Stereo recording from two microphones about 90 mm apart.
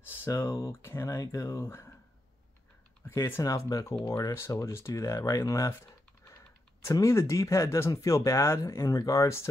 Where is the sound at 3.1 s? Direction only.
35° left (ahead or behind).